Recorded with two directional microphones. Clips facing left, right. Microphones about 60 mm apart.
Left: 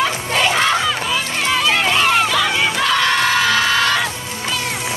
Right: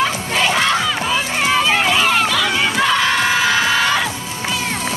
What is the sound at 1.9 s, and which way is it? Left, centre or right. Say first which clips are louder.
Run: even; centre.